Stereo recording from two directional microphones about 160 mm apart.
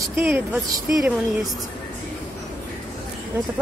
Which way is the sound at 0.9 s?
Centre (ahead or behind).